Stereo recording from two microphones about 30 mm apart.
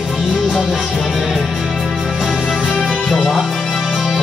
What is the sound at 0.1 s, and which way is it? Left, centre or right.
Music, centre.